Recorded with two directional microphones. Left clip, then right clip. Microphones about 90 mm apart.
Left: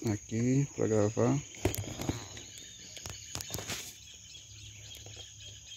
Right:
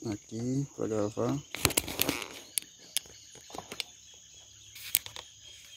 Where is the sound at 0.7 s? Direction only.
45° left (ahead or behind).